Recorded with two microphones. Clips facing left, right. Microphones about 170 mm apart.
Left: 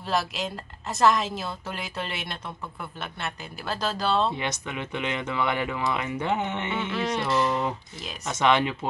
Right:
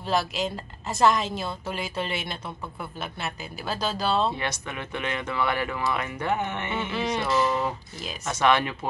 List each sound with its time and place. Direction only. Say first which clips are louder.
0.0 s a woman's voice: right 2 dB; centre (ahead or behind)
4.4 s speech: left 1 dB; 15° left (ahead or behind)
6.7 s a woman's voice: right 1 dB; 5° right (ahead or behind)
8.3 s speech: even; 20° left (ahead or behind)